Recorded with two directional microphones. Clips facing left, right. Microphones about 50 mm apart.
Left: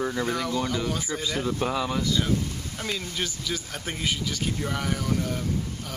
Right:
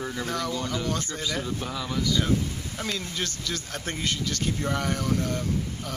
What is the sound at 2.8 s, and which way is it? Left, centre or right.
Speech, centre.